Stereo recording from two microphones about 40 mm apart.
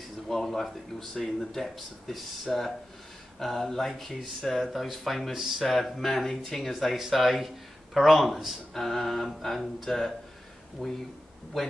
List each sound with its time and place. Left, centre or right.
0.3 s speech: centre
8.7 s speech: centre
10.8 s speech: left